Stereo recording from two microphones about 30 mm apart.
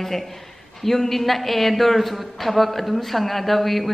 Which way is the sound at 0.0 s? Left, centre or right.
Centre.